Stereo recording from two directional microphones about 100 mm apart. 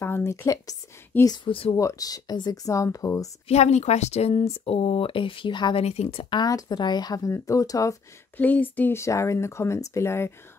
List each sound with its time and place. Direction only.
0.0 s speech: 25° left (ahead or behind)
1.2 s speech: 45° left (ahead or behind)
1.5 s speech: 65° left (ahead or behind)
1.8 s speech: 35° left (ahead or behind)
3.4 s speech: 90° left; by 5.8 s 50° left (ahead or behind)
5.8 s speech: 85° left
6.3 s speech: 45° left (ahead or behind)
8.4 s speech: 15° left (ahead or behind)